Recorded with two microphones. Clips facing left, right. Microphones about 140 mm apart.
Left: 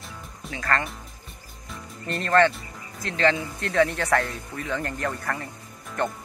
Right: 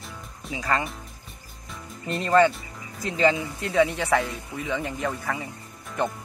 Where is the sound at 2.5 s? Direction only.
10° right (ahead or behind).